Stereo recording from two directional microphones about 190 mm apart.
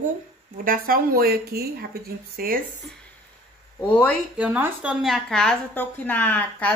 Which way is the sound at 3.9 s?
5° left (ahead or behind).